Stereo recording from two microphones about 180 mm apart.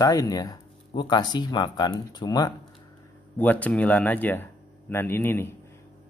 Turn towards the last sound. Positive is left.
turn(degrees=10)  # may be behind; listen again after turning